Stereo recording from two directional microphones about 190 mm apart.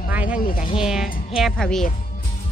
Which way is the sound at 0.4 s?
50° left (ahead or behind).